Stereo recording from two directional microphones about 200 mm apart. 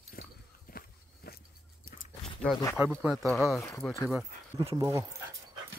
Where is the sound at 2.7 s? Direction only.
10° right (ahead or behind).